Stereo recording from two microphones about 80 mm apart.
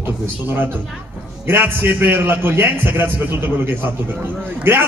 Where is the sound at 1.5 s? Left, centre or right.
Right.